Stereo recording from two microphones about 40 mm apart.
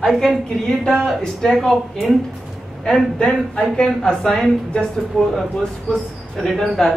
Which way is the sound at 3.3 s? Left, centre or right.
Centre.